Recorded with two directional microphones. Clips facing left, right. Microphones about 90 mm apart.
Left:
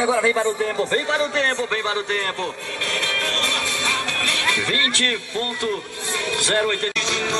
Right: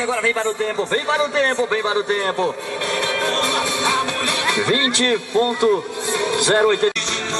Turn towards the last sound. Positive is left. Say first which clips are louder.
# right 6 dB
turn(degrees=-20)  # may be behind; listen again after turning